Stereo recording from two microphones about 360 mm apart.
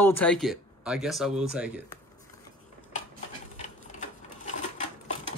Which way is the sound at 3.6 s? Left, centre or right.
Centre.